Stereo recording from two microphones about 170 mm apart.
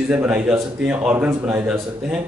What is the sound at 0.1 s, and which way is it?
A man's voice, 5° right (ahead or behind).